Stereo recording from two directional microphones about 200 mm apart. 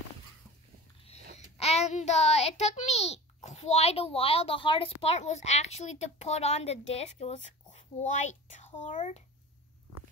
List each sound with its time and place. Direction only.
1.6 s a child's voice: 35° left (ahead or behind)